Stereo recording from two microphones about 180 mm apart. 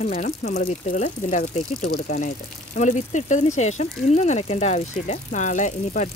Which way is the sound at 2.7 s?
45° left (ahead or behind).